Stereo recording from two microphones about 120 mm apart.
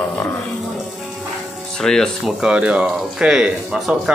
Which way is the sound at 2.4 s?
10° right (ahead or behind).